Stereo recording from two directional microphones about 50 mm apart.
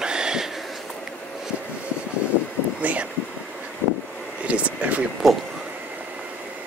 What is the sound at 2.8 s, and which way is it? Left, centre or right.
Speech, right.